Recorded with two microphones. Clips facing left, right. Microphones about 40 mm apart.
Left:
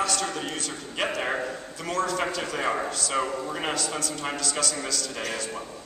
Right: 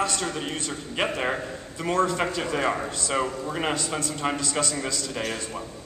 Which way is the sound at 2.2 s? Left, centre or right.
Centre.